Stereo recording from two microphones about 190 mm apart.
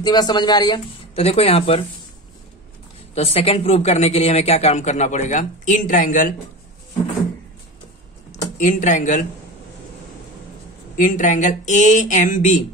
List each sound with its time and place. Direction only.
0.0 s speech: 20° left (ahead or behind)
3.2 s speech: 30° left (ahead or behind); by 6.3 s 45° left (ahead or behind)
8.3 s speech: 40° left (ahead or behind)
11.0 s speech: 45° left (ahead or behind)